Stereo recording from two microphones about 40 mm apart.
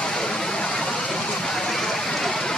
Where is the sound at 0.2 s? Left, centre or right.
Centre.